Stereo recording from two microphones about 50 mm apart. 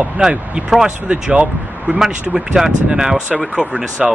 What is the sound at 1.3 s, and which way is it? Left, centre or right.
Speech, right.